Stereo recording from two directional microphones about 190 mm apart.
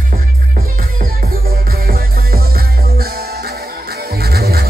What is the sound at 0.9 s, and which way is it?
Music, 55° right (ahead or behind).